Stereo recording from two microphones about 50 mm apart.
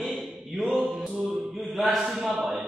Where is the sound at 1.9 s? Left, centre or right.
Centre.